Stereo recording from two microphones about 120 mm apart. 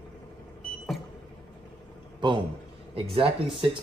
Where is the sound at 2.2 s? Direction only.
40° right (ahead or behind).